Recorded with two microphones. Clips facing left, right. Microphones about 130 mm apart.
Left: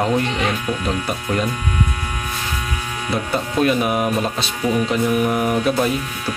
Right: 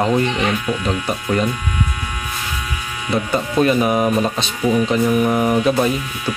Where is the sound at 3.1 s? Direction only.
Centre (ahead or behind).